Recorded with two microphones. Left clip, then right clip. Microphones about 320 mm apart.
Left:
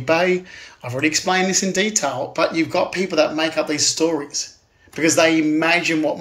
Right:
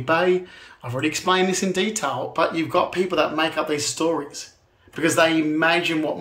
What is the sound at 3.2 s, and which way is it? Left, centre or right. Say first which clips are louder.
Speech: left 2 dB; centre.